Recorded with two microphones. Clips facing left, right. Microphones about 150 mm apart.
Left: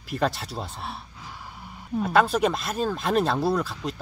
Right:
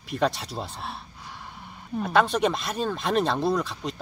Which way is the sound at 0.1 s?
Centre (ahead or behind).